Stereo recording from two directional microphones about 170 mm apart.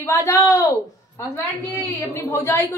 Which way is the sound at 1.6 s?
15° left (ahead or behind).